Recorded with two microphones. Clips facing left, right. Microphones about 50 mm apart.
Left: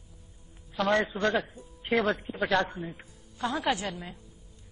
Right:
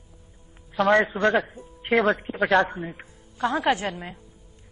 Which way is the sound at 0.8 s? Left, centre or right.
Right.